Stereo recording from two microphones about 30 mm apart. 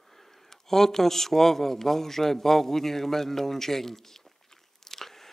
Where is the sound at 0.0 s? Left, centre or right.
Centre.